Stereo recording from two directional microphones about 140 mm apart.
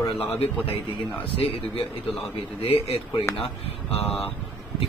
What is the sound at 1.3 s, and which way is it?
A man's voice, 40° left (ahead or behind).